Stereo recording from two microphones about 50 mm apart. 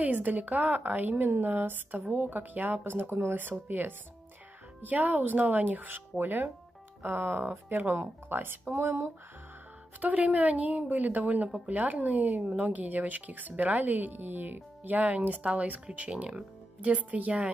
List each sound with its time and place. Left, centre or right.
0.0 s speech: right
8.7 s speech: right
10.0 s speech: right